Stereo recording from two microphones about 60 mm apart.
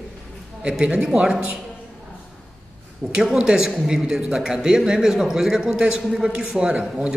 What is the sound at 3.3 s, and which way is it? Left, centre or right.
Speech, centre.